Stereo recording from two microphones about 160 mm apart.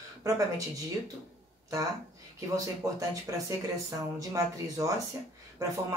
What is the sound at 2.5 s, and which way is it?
Speech, 20° right (ahead or behind).